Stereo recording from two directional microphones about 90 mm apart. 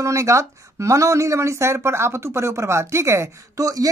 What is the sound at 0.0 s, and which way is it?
A woman's voice, 35° right (ahead or behind).